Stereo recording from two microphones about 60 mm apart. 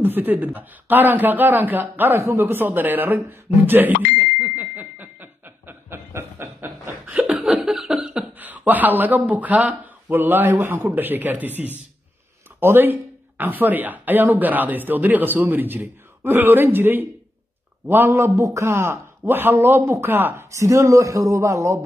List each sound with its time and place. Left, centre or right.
0.0 s speech: right
2.1 s a sound: right
7.2 s a sound: right
7.6 s cough: centre
8.4 s speech: right
18.3 s speech: right
20.5 s speech: right